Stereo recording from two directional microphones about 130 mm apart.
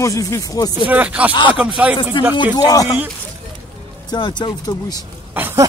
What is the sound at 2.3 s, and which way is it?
Speech, 35° left (ahead or behind).